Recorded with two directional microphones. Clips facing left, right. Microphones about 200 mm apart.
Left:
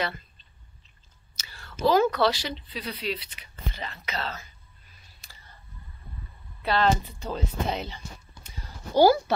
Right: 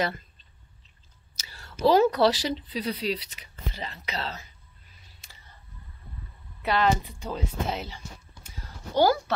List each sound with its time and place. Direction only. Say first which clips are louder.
0.0 s a sound: right 2 dB; 40° right (ahead or behind)
1.4 s whispering: left 1 dB; 35° right (ahead or behind)
1.9 s speech: right 2 dB; 35° right (ahead or behind)
5.2 s a sound: left 2 dB; 25° right (ahead or behind)
6.6 s speech: even; 15° right (ahead or behind)
8.9 s speech: left 3 dB; 10° left (ahead or behind)